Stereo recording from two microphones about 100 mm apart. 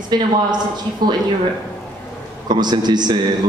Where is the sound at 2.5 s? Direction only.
45° right (ahead or behind).